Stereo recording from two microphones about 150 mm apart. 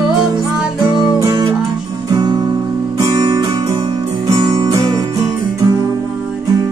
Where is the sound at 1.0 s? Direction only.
25° right (ahead or behind).